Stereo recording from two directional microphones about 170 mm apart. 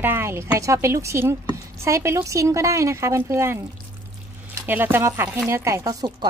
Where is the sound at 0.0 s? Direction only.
15° right (ahead or behind).